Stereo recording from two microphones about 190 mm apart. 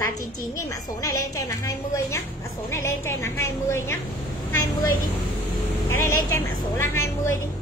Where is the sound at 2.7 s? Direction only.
15° left (ahead or behind).